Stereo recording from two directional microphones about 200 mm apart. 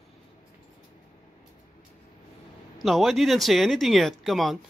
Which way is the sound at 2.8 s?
Centre (ahead or behind).